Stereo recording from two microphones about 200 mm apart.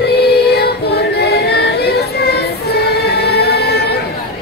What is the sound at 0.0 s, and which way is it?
Music, 55° left (ahead or behind).